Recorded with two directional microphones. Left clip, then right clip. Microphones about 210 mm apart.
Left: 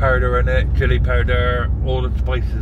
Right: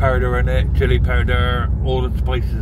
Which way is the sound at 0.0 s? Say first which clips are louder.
Left 1 dB; 10° right (ahead or behind).